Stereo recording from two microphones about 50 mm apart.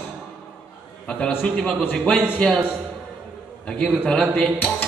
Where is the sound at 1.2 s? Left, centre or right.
Left.